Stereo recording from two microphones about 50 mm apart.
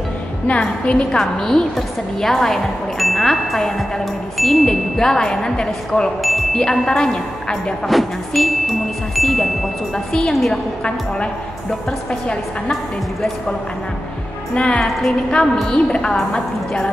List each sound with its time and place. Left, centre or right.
0.5 s a woman's voice: left
7.9 s music: centre
12.1 s a woman's voice: centre
14.5 s a woman's voice: left
14.8 s music: centre
15.7 s speech: centre